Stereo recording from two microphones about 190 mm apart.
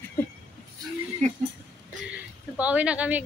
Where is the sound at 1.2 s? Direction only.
35° right (ahead or behind).